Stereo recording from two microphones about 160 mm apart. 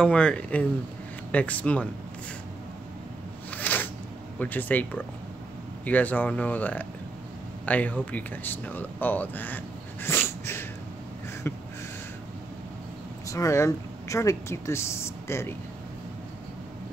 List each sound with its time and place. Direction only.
0.0 s speech: 5° left (ahead or behind)
3.5 s a sound: 10° left (ahead or behind)
4.4 s speech: 10° left (ahead or behind)
10.0 s dog: 15° left (ahead or behind)
11.4 s a sound: 15° left (ahead or behind)
13.3 s speech: 20° left (ahead or behind)